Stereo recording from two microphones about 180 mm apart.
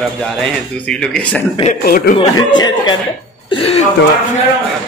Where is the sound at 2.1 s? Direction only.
25° left (ahead or behind).